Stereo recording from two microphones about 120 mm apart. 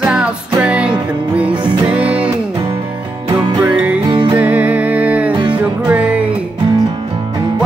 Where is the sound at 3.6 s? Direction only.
15° right (ahead or behind).